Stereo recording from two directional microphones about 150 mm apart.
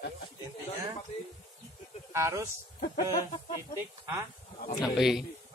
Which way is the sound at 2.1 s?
20° right (ahead or behind).